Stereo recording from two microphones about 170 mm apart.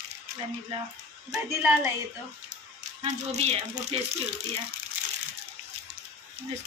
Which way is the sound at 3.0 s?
40° right (ahead or behind).